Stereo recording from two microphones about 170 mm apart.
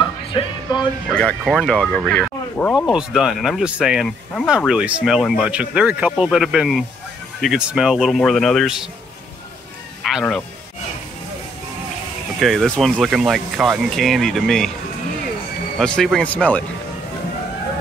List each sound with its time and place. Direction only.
0.0 s music: 30° left (ahead or behind)
1.0 s speech: 5° left (ahead or behind)
10.0 s speech: 5° left (ahead or behind)
12.4 s speech: centre (ahead or behind)
15.8 s speech: 5° left (ahead or behind)